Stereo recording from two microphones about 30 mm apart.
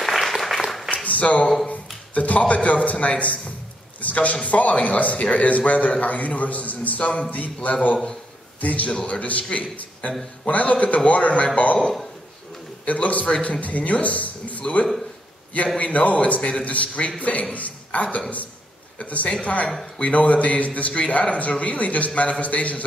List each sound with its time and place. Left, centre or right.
0.0 s applause: centre
0.8 s a sound: left
2.1 s a man's voice: left
7.0 s a man's voice: left
7.2 s a man's voice: left
9.0 s a man's voice: left
12.8 s a man's voice: left
14.0 s a sound: left
14.6 s a man's voice: left